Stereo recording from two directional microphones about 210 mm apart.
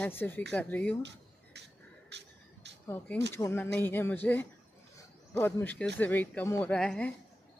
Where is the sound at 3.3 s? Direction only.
10° left (ahead or behind).